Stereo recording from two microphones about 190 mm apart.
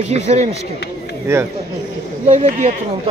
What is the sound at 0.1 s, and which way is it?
Speech, 35° right (ahead or behind).